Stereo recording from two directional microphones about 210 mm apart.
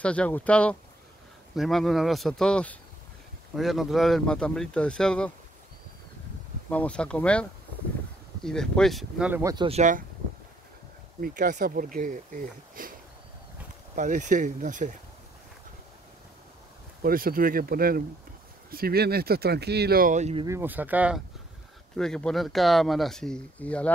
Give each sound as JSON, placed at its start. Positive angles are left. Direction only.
{"t": 0.0, "sound": "speech", "side_deg": 5}
{"t": 6.7, "sound": "speech", "side_deg": 5}
{"t": 8.5, "sound": "speech", "side_deg": 5}
{"t": 9.7, "sound": "speech", "side_deg": -35}
{"t": 11.1, "sound": "speech", "side_deg": -40}
{"t": 13.9, "sound": "speech", "side_deg": -35}
{"t": 17.0, "sound": "speech", "side_deg": -45}
{"t": 20.4, "sound": "speech", "side_deg": -10}